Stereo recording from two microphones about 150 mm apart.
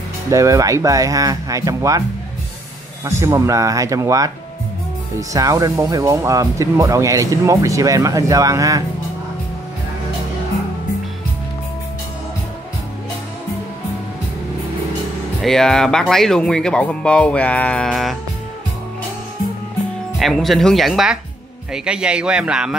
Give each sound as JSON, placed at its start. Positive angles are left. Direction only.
{"t": 0.3, "sound": "speech", "side_deg": -20}
{"t": 3.2, "sound": "speech", "side_deg": -20}
{"t": 5.3, "sound": "speech", "side_deg": -25}
{"t": 15.4, "sound": "speech", "side_deg": 5}
{"t": 20.2, "sound": "speech", "side_deg": 0}